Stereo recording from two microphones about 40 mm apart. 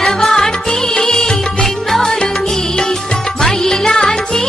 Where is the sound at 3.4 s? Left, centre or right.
Centre.